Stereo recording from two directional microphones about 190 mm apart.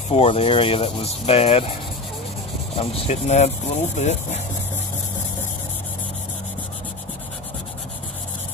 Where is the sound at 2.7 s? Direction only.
30° left (ahead or behind).